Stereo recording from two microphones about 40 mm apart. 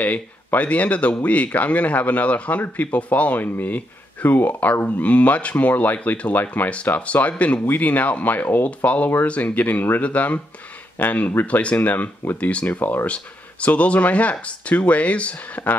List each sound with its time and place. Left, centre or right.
0.0 s speech: left
3.3 s speech: left
7.0 s speech: left
7.6 s speech: left
12.4 s speech: left
12.6 s speech: left
13.0 s speech: left